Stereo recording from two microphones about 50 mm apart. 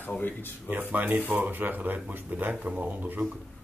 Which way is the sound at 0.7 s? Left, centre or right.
Right.